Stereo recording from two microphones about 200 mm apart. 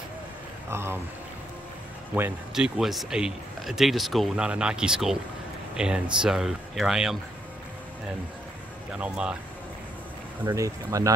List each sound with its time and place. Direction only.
0.7 s speech: 10° right (ahead or behind)
2.1 s speech: 5° right (ahead or behind)
8.9 s speech: 5° right (ahead or behind)
10.4 s speech: 15° right (ahead or behind)